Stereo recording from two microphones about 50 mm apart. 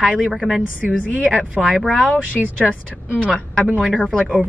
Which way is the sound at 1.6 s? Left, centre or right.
Centre.